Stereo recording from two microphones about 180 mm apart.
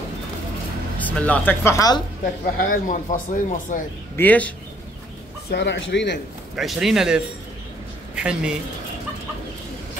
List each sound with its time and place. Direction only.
0.9 s speech: 10° left (ahead or behind)
2.7 s speech: 45° left (ahead or behind)
4.2 s speech: 10° left (ahead or behind)
5.5 s speech: 75° left (ahead or behind)
6.5 s speech: centre (ahead or behind)
8.2 s speech: 5° right (ahead or behind)